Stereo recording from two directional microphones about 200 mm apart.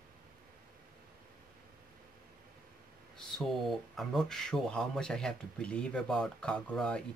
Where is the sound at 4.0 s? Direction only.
Centre (ahead or behind).